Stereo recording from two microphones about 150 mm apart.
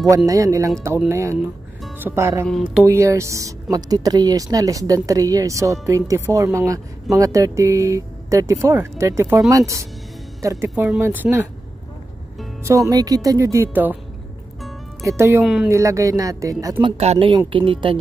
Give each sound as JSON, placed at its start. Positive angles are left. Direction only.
{"t": 0.3, "sound": "speech", "side_deg": -20}
{"t": 12.6, "sound": "speech", "side_deg": -20}
{"t": 15.0, "sound": "speech", "side_deg": -20}
{"t": 15.4, "sound": "speech", "side_deg": -5}
{"t": 15.7, "sound": "speech", "side_deg": -20}
{"t": 16.8, "sound": "a woman's voice", "side_deg": -45}